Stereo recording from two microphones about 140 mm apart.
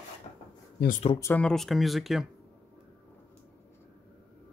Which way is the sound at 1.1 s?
20° left (ahead or behind).